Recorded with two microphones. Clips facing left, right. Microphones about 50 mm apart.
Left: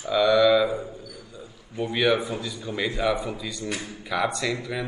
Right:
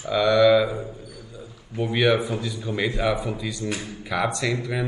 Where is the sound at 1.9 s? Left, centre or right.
Centre.